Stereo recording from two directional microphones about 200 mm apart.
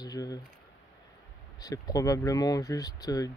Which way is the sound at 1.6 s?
20° left (ahead or behind).